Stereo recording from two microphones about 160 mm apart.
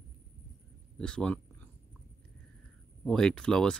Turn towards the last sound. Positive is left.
turn(degrees=5)  # may be behind; listen again after turning